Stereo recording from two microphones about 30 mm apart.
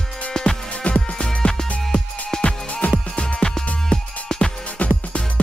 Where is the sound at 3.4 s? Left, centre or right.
Centre.